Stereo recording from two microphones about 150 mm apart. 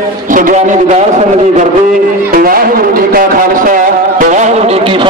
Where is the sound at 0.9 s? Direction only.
45° right (ahead or behind).